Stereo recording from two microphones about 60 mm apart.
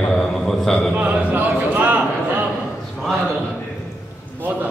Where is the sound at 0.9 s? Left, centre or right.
Right.